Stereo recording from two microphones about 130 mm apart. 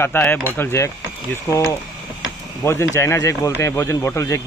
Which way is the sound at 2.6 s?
20° left (ahead or behind).